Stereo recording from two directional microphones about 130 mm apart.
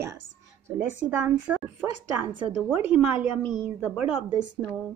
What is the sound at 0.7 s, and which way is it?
A woman's voice, 15° right (ahead or behind).